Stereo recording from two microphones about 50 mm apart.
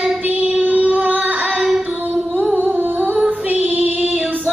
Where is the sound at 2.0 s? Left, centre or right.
Right.